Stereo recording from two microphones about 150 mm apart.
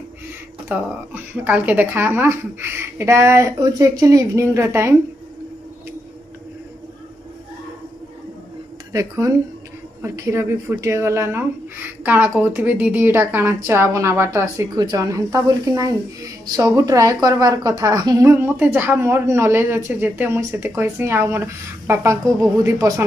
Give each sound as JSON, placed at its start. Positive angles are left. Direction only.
{"t": 0.7, "sound": "a woman's voice", "side_deg": -15}
{"t": 8.9, "sound": "a woman's voice", "side_deg": -20}